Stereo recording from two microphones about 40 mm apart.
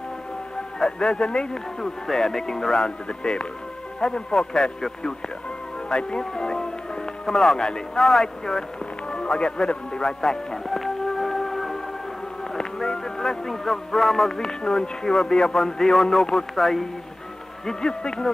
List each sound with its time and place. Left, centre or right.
0.7 s speech: centre
3.1 s a man's voice: left
5.9 s speech: left
7.2 s speech: centre
7.5 s a man's voice: centre
8.0 s speech: centre
9.1 s a man's voice: left
10.2 s music: centre
12.8 s vehicle: centre
13.5 s music: centre
14.3 s speech: centre
16.5 s music: centre
17.6 s speech: centre